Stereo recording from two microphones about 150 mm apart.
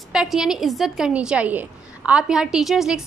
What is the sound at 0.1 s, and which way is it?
A woman's voice, 5° right (ahead or behind).